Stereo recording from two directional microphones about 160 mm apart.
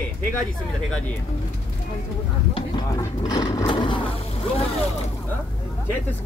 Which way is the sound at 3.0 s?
20° left (ahead or behind).